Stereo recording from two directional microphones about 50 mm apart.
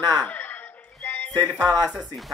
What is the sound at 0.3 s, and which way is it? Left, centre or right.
Music, left.